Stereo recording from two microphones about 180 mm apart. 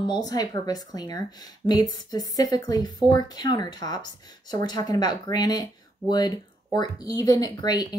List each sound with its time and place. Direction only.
0.0 s a woman's voice: 25° left (ahead or behind)